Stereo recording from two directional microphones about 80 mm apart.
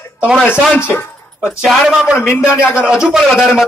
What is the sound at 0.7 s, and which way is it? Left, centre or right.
Music, left.